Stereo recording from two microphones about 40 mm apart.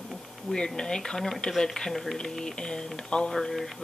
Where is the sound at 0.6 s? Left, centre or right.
Centre.